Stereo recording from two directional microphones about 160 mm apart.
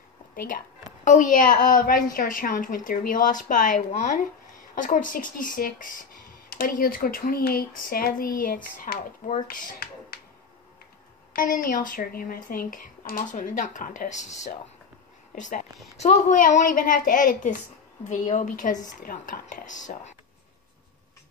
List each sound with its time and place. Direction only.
1.0 s speech: 50° left (ahead or behind)
6.5 s speech: 70° left (ahead or behind)
9.5 s a sound: 65° left (ahead or behind)
11.3 s speech: 55° left (ahead or behind)